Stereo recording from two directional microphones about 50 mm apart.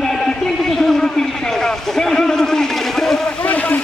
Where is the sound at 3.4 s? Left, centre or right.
Left.